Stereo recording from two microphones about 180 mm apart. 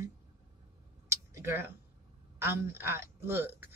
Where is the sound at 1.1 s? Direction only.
15° right (ahead or behind).